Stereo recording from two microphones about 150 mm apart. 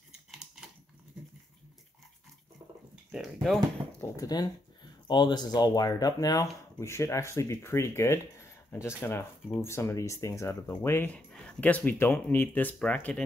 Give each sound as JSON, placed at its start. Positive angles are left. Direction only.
{"t": 3.1, "sound": "speech", "side_deg": 0}
{"t": 4.0, "sound": "speech", "side_deg": 25}